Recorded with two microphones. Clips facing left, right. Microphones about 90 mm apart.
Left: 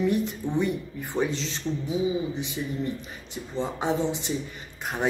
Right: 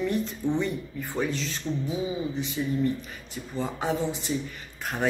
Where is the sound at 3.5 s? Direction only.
20° left (ahead or behind).